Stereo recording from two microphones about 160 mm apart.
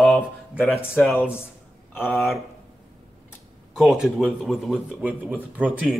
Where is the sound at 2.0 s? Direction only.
15° left (ahead or behind).